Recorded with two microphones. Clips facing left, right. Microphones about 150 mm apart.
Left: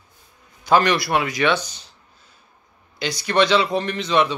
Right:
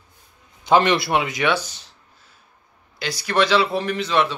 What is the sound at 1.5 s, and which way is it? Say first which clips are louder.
Speech: left 1 dB; 5° right (ahead or behind).